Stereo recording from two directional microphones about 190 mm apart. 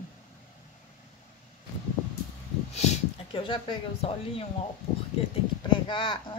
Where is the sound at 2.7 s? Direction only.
35° left (ahead or behind).